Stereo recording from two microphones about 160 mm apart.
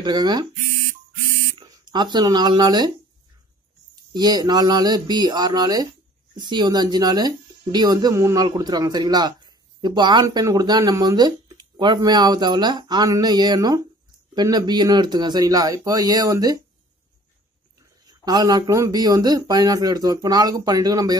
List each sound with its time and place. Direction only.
0.0 s speech: 25° right (ahead or behind)
1.6 s speech: 25° right (ahead or behind)
3.9 s speech: 25° right (ahead or behind)
18.0 s speech: 25° right (ahead or behind)